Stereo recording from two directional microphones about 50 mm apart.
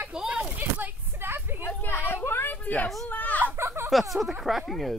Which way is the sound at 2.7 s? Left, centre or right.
Left.